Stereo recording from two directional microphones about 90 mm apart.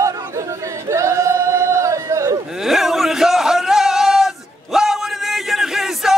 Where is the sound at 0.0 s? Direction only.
35° right (ahead or behind).